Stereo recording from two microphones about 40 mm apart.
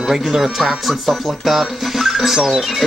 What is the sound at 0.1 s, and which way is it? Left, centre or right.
Speech, centre.